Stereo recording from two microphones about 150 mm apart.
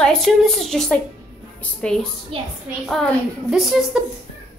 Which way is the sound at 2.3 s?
40° right (ahead or behind).